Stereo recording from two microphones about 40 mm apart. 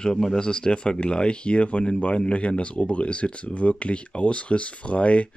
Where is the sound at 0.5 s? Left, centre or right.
Left.